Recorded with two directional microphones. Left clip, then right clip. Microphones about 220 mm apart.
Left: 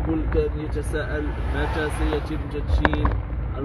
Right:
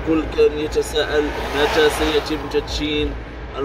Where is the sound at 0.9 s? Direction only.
25° right (ahead or behind).